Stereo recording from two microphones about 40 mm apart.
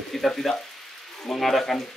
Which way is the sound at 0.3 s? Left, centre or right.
Centre.